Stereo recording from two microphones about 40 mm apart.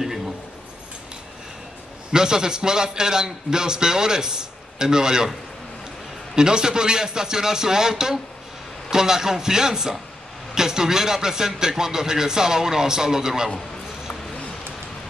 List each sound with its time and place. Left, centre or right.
0.0 s a sound: centre
2.1 s a man's voice: centre
6.3 s a man's voice: centre